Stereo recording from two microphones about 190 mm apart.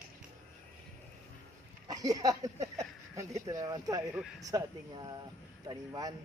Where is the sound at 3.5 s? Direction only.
20° right (ahead or behind).